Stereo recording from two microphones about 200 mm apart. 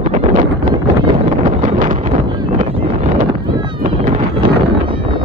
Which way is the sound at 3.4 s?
20° right (ahead or behind).